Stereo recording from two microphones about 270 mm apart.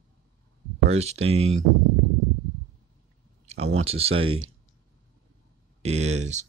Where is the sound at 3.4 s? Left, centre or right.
Right.